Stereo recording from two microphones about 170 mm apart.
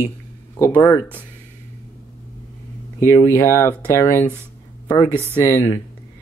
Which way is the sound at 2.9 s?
15° left (ahead or behind).